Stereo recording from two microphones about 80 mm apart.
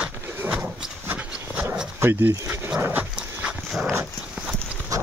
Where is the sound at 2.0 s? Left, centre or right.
Right.